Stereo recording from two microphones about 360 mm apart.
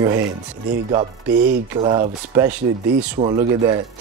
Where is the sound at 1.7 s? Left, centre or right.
Centre.